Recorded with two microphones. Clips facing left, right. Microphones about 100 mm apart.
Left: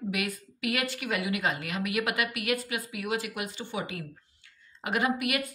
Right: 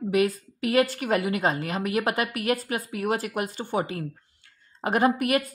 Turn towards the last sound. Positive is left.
turn(degrees=-40)  # may be behind; listen again after turning